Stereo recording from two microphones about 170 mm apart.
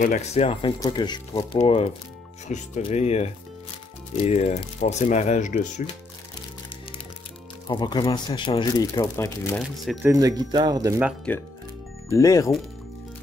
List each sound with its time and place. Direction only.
0.0 s speech: 45° left (ahead or behind)
7.6 s speech: 25° left (ahead or behind)
10.0 s speech: 20° right (ahead or behind)
11.3 s speech: 5° left (ahead or behind)
12.2 s speech: 20° left (ahead or behind)